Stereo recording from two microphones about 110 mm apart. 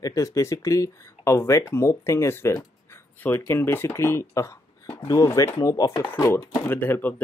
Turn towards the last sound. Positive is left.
turn(degrees=20)  # may be behind; listen again after turning